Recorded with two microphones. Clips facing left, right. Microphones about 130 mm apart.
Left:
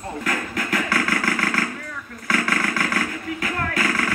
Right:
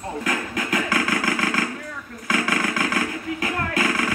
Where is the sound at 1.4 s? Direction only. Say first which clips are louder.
Even; 15° right (ahead or behind).